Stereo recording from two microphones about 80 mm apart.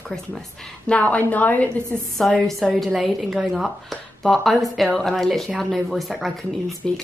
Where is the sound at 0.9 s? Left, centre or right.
Centre.